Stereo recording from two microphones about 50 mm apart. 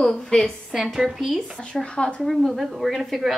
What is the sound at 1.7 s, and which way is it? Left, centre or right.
Speech, centre.